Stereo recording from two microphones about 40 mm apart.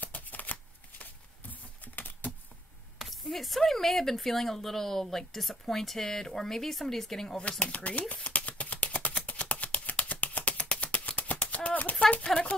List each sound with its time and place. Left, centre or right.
0.0 s shuffling cards: left
1.5 s typing: left
3.0 s speech: centre
7.3 s speech: left
8.1 s a sound: left
12.3 s speech: centre